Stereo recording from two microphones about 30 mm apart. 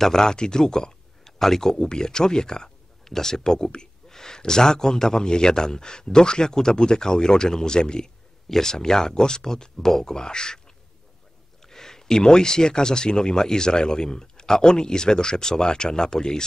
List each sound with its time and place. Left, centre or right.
0.0 s speech: left
10.1 s speech: left
11.6 s speech: centre